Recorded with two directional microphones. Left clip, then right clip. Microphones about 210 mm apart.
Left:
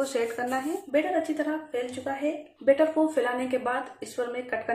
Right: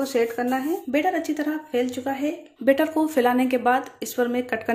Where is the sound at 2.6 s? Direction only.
45° right (ahead or behind).